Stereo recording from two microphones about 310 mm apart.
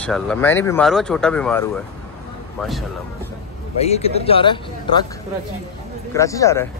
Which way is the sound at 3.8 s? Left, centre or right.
Centre.